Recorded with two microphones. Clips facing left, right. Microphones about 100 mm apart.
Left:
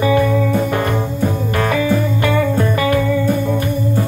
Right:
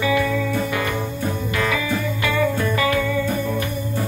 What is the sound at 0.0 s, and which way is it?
Music, 40° left (ahead or behind).